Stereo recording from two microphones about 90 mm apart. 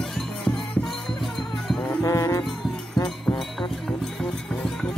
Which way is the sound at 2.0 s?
35° left (ahead or behind).